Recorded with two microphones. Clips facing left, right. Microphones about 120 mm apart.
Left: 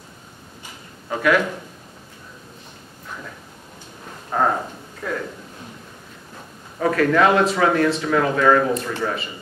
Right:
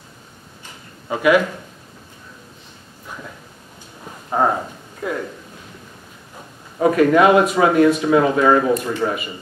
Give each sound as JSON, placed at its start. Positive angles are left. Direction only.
{"t": 1.0, "sound": "speech", "side_deg": -10}
{"t": 4.4, "sound": "speech", "side_deg": -15}
{"t": 6.8, "sound": "speech", "side_deg": -15}